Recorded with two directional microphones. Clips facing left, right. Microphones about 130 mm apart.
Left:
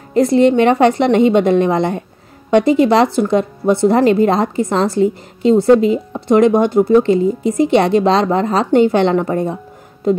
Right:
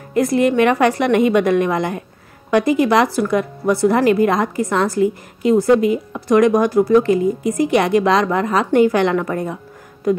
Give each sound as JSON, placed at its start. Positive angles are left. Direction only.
{"t": 0.1, "sound": "speech", "side_deg": 30}